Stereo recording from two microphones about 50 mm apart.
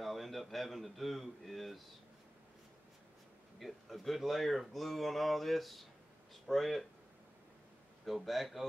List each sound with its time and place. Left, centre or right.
0.0 s a man's voice: centre
3.5 s speech: centre
8.0 s speech: centre